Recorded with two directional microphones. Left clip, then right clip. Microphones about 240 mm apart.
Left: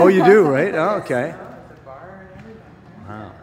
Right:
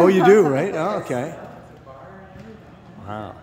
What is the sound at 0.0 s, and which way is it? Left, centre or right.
A man's voice, centre.